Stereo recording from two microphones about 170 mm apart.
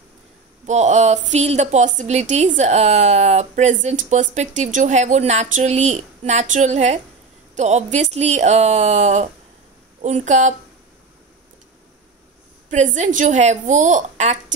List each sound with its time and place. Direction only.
0.7 s a woman's voice: 45° right (ahead or behind)
12.6 s speech: 45° right (ahead or behind)